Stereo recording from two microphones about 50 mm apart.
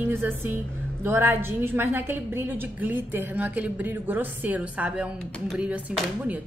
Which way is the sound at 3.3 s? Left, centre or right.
Right.